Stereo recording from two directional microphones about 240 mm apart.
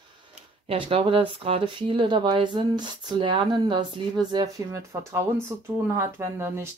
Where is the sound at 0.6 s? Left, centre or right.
Right.